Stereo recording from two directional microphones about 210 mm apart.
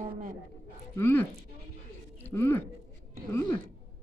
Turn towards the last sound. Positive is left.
turn(degrees=10)  # may be behind; listen again after turning